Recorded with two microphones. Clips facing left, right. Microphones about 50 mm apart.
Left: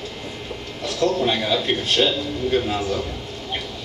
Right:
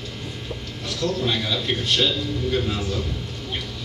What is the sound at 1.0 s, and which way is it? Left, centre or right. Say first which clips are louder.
A man's voice: left 4 dB; left.